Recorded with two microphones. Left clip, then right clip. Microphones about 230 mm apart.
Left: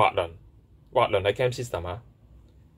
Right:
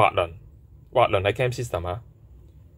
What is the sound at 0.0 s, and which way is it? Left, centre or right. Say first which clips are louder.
Speech: right 2 dB; centre.